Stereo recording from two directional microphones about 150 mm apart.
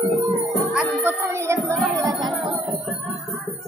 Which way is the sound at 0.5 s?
5° right (ahead or behind).